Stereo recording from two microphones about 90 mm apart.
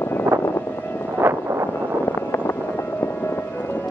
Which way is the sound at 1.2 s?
30° right (ahead or behind).